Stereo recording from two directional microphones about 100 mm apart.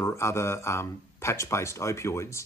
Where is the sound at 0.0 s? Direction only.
30° left (ahead or behind).